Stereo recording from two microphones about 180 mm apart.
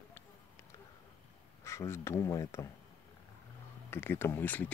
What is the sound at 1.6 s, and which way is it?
Speech, 15° left (ahead or behind).